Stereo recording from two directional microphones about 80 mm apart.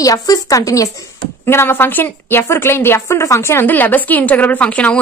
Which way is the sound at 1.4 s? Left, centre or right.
Left.